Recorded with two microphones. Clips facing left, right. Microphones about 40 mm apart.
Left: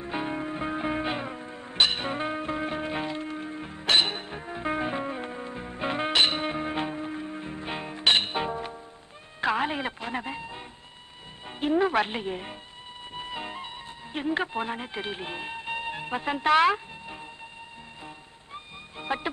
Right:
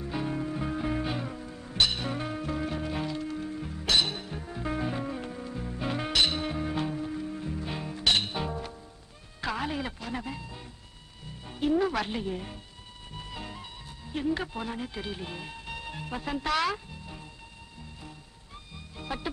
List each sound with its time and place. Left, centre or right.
0.0 s music: left
14.1 s speech: left
18.0 s music: left